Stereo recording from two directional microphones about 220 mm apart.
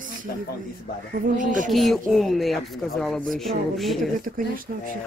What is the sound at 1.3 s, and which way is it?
Speech, 35° right (ahead or behind).